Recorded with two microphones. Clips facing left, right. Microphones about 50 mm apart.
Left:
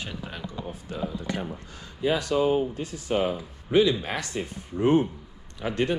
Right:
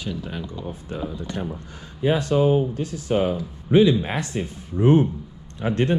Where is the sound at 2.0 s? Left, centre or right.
Right.